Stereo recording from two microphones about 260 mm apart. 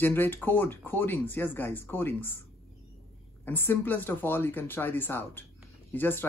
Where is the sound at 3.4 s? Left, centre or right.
Centre.